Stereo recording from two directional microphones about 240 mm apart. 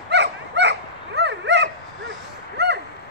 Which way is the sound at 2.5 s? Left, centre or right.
Right.